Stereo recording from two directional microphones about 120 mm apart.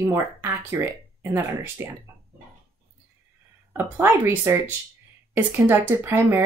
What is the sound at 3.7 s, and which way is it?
Speech, 20° right (ahead or behind).